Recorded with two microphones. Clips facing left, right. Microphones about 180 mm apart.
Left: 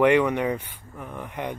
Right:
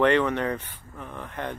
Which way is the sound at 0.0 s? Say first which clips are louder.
Left 2 dB; 10° left (ahead or behind).